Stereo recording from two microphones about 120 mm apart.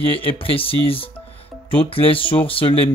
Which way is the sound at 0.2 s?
50° left (ahead or behind).